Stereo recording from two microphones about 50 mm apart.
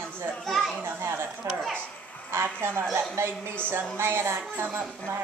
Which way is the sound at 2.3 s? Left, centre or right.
Right.